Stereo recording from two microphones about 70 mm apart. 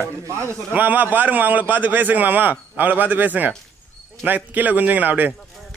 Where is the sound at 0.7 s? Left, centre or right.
Right.